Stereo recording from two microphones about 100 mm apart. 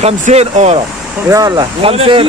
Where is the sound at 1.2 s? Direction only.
40° right (ahead or behind).